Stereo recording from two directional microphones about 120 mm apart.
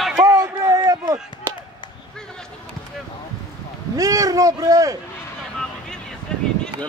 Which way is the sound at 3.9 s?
30° right (ahead or behind).